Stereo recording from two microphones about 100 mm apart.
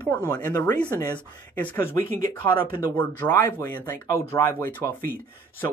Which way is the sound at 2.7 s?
25° left (ahead or behind).